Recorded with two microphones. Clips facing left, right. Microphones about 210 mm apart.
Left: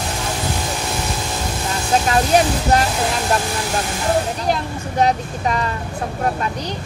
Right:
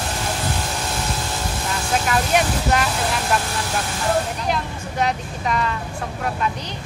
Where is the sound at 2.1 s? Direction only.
35° left (ahead or behind).